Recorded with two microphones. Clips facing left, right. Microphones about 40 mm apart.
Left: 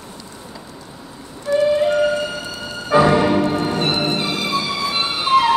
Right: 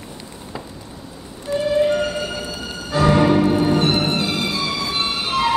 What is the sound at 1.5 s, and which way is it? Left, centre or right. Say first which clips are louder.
Music: left 5 dB; left.